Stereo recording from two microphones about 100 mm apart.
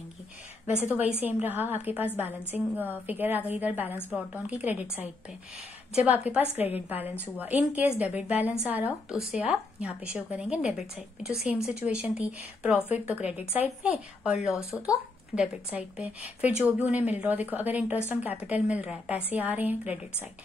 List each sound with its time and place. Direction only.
0.9 s a woman's voice: 20° right (ahead or behind)
5.9 s speech: 15° right (ahead or behind)